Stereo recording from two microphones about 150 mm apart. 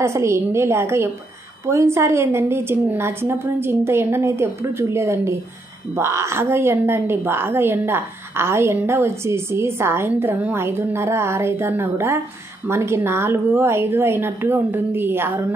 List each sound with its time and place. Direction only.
0.0 s a woman's voice: 20° right (ahead or behind)